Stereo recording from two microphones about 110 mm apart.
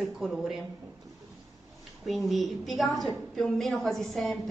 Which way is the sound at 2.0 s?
Centre (ahead or behind).